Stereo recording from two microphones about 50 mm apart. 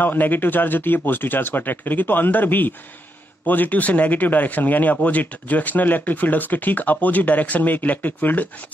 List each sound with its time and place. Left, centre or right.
0.0 s speech: left